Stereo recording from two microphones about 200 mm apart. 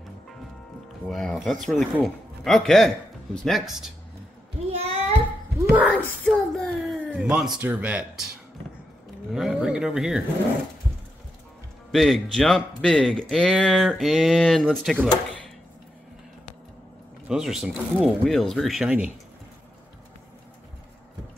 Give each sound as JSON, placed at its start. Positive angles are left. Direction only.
{"t": 1.0, "sound": "speech", "side_deg": 0}
{"t": 4.7, "sound": "a sound", "side_deg": -30}
{"t": 5.9, "sound": "speech", "side_deg": 5}
{"t": 9.3, "sound": "speech", "side_deg": -5}
{"t": 11.9, "sound": "speech", "side_deg": 0}
{"t": 17.3, "sound": "speech", "side_deg": -5}